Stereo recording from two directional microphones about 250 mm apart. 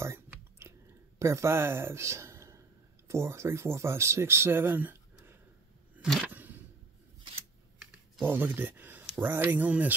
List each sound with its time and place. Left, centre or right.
0.0 s chewing: centre
1.2 s speech: centre
5.9 s a sound: centre
8.2 s speech: centre